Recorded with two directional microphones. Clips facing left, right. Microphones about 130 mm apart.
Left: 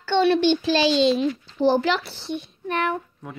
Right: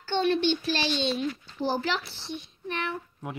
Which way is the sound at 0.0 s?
75° left (ahead or behind).